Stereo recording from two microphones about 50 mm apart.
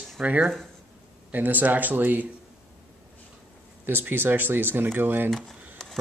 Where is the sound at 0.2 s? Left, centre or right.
Right.